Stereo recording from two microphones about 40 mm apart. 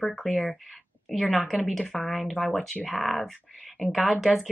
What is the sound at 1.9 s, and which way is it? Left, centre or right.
Speech, centre.